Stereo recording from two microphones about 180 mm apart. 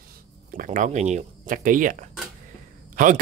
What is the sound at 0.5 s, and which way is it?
Speech, 50° right (ahead or behind).